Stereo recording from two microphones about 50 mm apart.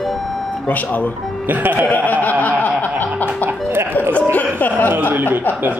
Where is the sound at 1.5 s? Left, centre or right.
Right.